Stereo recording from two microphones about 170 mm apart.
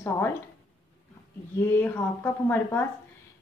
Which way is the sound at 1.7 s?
15° left (ahead or behind).